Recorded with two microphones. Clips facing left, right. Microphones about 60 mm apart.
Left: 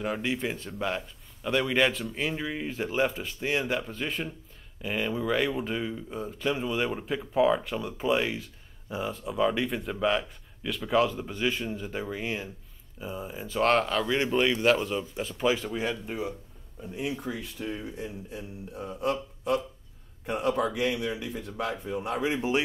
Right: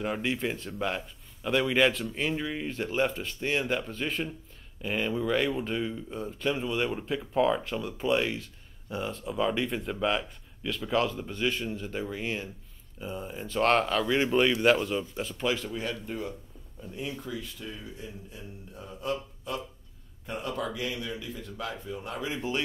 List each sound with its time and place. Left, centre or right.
0.0 s speech: centre
15.7 s speech: left
16.8 s speech: centre
17.3 s speech: left
19.0 s a sound: left
20.2 s speech: left